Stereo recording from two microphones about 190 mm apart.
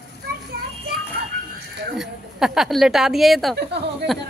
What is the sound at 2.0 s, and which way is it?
A woman's voice, centre (ahead or behind).